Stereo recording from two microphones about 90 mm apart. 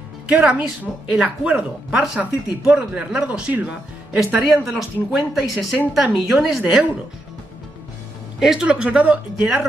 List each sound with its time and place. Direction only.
0.3 s speech: 10° right (ahead or behind)
6.6 s speech: 15° right (ahead or behind)
8.4 s speech: 10° right (ahead or behind)
9.4 s speech: centre (ahead or behind)